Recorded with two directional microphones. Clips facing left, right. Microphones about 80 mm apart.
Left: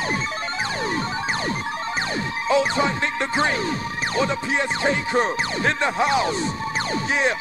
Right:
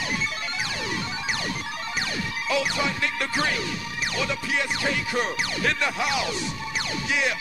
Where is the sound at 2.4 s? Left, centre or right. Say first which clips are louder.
Left 6 dB; left.